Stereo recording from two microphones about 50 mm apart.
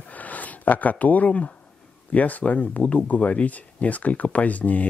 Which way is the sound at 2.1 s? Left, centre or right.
Left.